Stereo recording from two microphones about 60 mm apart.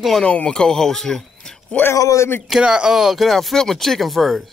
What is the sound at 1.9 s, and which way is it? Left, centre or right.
Speech, left.